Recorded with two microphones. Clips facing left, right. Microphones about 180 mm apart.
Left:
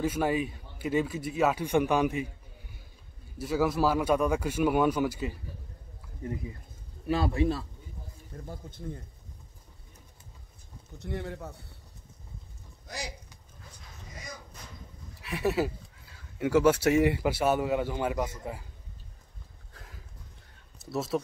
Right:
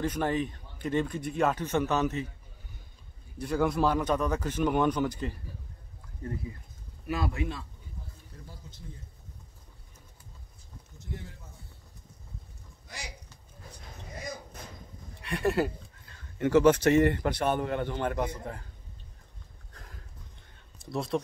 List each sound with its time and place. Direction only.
0.0 s speech: 10° left (ahead or behind)
3.3 s speech: 5° left (ahead or behind)
7.1 s speech: 30° left (ahead or behind)
8.5 s speech: 55° left (ahead or behind)
11.0 s speech: 70° left (ahead or behind)
12.8 s speech: 40° left (ahead or behind)
15.1 s speech: 5° left (ahead or behind)
19.7 s horse: centre (ahead or behind)
20.8 s speech: 5° left (ahead or behind)